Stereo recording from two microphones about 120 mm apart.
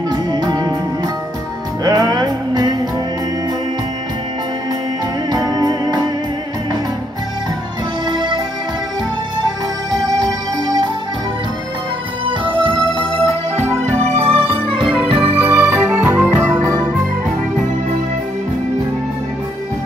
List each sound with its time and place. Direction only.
0.1 s music: 35° right (ahead or behind)
1.9 s music: 35° right (ahead or behind)
5.3 s music: 35° right (ahead or behind)
8.1 s music: 40° right (ahead or behind)
10.0 s music: 35° right (ahead or behind)
13.8 s music: 70° right (ahead or behind); by 14.6 s 55° right (ahead or behind)
15.3 s music: 15° right (ahead or behind)